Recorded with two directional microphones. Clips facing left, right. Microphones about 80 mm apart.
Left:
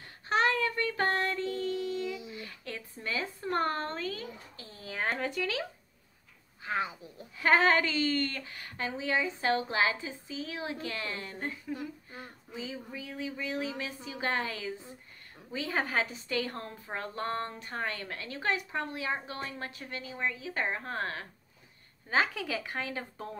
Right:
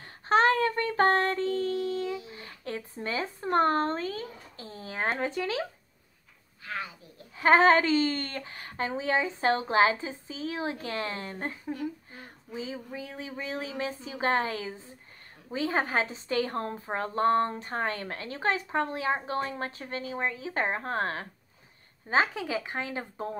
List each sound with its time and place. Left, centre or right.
0.3 s child singing: right
5.2 s speech: right
6.6 s a sound: left
7.3 s a woman's voice: right